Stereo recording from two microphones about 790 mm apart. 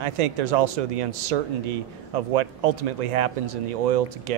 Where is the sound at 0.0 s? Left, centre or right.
Right.